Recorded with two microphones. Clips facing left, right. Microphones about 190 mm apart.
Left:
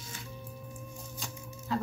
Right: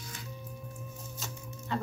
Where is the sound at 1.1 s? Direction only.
Centre (ahead or behind).